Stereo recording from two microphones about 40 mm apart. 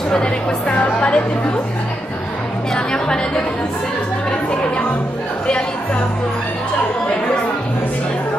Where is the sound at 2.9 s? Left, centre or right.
Left.